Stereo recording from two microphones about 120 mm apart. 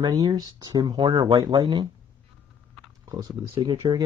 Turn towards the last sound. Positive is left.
turn(degrees=-40)  # may be behind; listen again after turning